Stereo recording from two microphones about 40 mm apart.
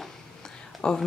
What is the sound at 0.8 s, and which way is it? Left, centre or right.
Speech, centre.